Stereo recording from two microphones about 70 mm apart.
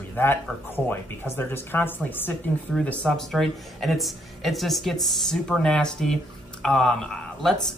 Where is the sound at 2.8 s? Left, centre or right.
Centre.